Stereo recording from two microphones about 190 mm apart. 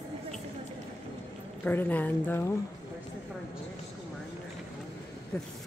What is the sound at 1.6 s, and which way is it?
Speech, 10° left (ahead or behind).